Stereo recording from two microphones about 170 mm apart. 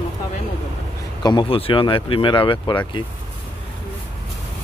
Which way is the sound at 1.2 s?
30° left (ahead or behind).